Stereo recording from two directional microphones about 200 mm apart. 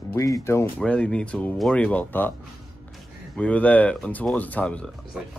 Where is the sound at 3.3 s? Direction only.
5° left (ahead or behind).